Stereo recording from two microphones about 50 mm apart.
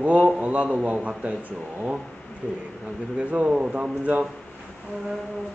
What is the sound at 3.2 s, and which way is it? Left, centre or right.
A man's voice, right.